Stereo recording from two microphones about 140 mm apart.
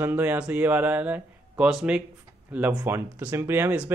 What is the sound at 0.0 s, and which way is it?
Speech, 15° right (ahead or behind).